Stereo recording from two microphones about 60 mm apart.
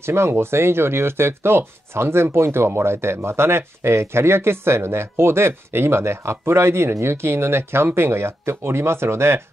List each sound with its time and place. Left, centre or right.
0.0 s speech: right